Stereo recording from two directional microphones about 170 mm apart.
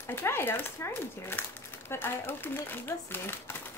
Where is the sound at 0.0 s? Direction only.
15° left (ahead or behind).